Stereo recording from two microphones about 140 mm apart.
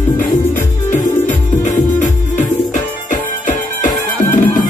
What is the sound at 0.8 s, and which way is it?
Music, 65° left (ahead or behind).